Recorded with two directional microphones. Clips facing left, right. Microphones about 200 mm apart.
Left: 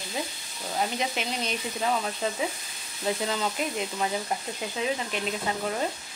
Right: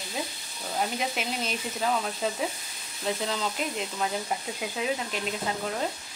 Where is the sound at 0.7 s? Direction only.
5° right (ahead or behind).